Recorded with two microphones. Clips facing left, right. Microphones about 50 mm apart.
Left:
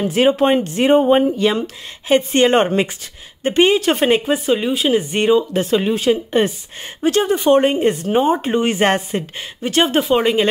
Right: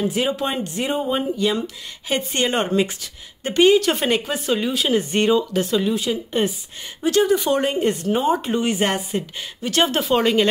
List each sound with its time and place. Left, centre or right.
0.0 s speech: left
10.0 s speech: centre